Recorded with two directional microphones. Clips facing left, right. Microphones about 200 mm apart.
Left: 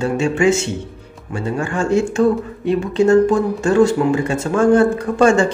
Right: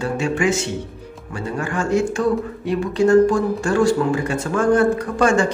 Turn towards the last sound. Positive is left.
turn(degrees=25)  # may be behind; listen again after turning